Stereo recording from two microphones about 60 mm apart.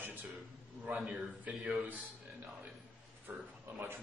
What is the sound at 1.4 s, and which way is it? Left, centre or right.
Speech, right.